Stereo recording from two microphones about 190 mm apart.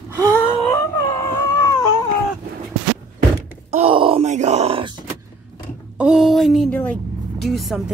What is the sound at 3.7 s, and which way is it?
Groan, 30° right (ahead or behind).